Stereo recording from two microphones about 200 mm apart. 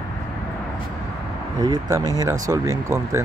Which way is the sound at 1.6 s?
20° right (ahead or behind).